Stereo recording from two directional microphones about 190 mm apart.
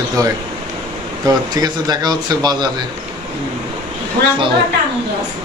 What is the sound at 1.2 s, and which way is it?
Speech, 20° right (ahead or behind).